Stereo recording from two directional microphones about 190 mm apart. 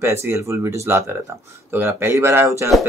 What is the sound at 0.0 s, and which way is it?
Speech, 15° right (ahead or behind).